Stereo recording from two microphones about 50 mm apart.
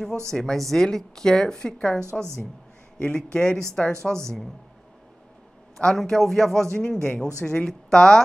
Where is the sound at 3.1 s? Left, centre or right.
Centre.